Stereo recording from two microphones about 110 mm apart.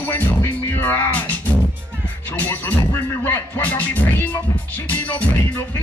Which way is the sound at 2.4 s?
15° left (ahead or behind).